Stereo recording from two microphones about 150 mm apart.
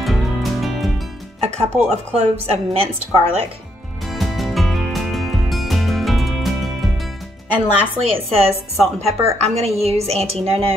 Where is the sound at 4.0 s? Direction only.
Centre (ahead or behind).